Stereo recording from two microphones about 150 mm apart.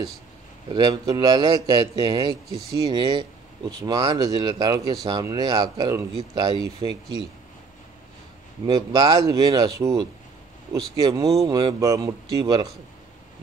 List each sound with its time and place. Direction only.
0.7 s a man's voice: 30° right (ahead or behind)
8.6 s a man's voice: 25° right (ahead or behind)
11.0 s a man's voice: 25° right (ahead or behind)